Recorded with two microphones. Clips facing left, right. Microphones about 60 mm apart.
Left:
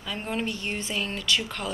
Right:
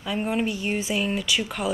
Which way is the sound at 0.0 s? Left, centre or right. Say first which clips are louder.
Right 5 dB; centre.